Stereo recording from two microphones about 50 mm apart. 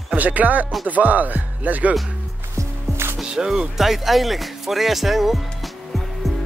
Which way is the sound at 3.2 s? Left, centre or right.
Centre.